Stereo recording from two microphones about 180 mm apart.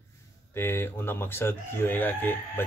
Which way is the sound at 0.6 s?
15° left (ahead or behind).